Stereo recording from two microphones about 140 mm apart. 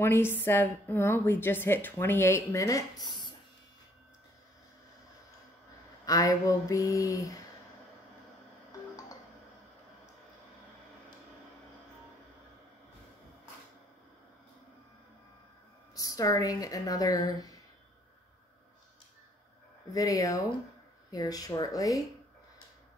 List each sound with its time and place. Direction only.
0.0 s a woman's voice: 15° left (ahead or behind)
6.0 s speech: 25° left (ahead or behind)
15.9 s speech: 25° left (ahead or behind)
19.9 s speech: 25° left (ahead or behind)